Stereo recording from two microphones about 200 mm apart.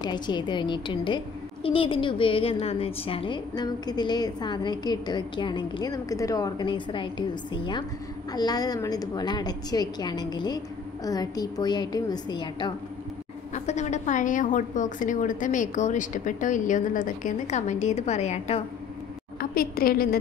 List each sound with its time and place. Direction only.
0.0 s a woman's voice: 20° left (ahead or behind)
13.7 s a woman's voice: 35° left (ahead or behind)
19.5 s a woman's voice: 45° left (ahead or behind)